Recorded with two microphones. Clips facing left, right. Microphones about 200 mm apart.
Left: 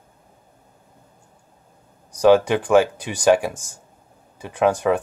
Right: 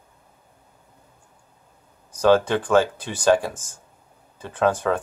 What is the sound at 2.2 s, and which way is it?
Speech, 15° left (ahead or behind).